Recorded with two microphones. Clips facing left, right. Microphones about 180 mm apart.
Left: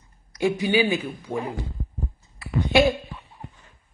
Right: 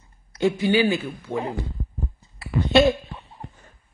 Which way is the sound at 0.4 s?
15° left (ahead or behind).